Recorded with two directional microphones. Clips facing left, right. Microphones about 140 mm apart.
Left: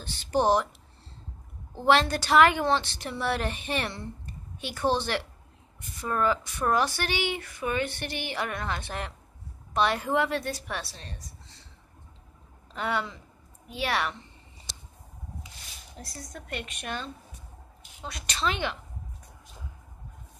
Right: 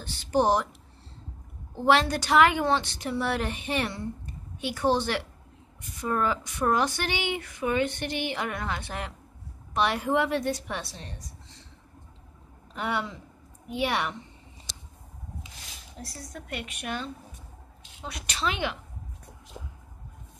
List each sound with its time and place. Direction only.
0.0 s speech: 10° right (ahead or behind)
1.9 s speech: 10° right (ahead or behind)
12.7 s speech: 10° right (ahead or behind)
16.0 s speech: 10° right (ahead or behind)